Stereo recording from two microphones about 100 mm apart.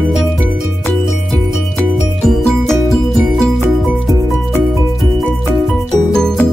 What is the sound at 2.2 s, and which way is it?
Music, 5° left (ahead or behind).